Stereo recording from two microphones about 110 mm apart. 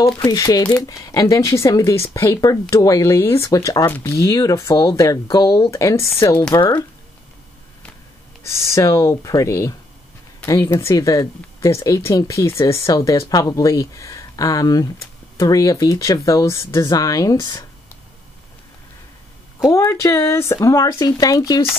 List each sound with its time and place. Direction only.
0.0 s speech: 35° left (ahead or behind)
8.5 s speech: 25° left (ahead or behind)
19.7 s speech: 25° left (ahead or behind)